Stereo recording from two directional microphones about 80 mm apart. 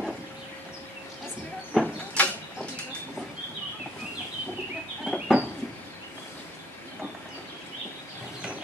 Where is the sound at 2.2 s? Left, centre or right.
Centre.